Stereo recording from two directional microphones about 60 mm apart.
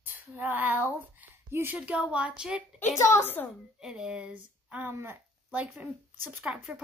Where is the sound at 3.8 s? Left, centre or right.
Centre.